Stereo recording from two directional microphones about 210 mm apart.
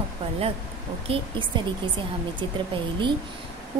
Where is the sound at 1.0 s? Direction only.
25° right (ahead or behind).